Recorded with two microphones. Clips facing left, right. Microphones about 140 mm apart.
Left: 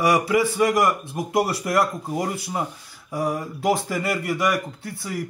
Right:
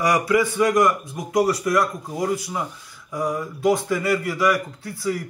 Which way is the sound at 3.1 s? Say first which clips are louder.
Even; 30° left (ahead or behind).